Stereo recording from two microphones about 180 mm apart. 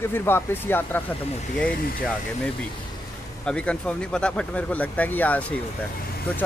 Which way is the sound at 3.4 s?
5° left (ahead or behind).